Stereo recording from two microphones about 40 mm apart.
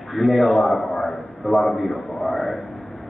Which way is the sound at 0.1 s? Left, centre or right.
Centre.